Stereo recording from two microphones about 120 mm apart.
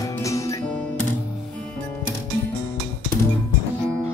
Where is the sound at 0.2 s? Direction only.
25° left (ahead or behind).